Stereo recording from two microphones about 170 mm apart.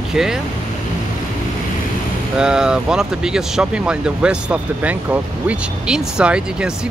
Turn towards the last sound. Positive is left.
turn(degrees=-5)  # may be behind; listen again after turning